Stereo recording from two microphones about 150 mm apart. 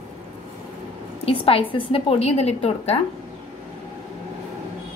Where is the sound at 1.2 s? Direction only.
40° left (ahead or behind).